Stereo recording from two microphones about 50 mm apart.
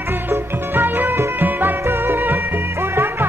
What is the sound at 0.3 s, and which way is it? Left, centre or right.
Music, right.